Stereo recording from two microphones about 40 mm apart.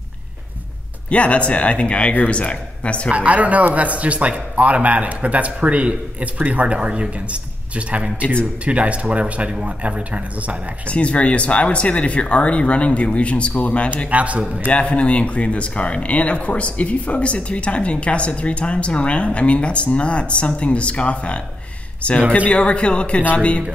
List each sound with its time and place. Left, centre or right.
1.1 s speech: left
3.1 s speech: right
10.9 s speech: left
14.1 s speech: right
14.7 s a man's voice: left